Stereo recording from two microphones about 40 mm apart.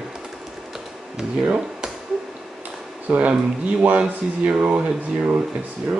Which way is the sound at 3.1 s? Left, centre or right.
Right.